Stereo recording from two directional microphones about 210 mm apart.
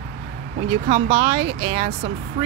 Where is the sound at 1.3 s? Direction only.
60° right (ahead or behind).